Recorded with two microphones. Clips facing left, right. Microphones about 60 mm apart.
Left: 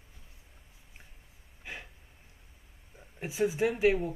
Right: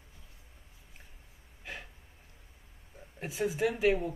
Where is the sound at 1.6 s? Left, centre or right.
Centre.